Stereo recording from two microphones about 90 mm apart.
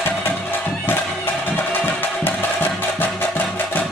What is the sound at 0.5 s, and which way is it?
Music, 25° left (ahead or behind).